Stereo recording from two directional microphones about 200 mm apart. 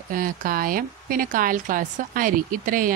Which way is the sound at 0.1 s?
45° right (ahead or behind).